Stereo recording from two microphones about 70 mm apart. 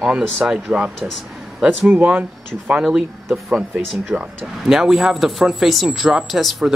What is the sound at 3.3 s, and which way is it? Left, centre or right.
Speech, centre.